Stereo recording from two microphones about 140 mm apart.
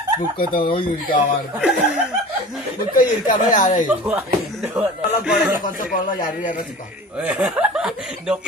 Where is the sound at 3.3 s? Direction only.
70° left (ahead or behind).